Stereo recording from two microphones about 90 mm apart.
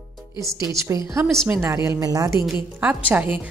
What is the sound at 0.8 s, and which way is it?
A woman's voice, 30° right (ahead or behind).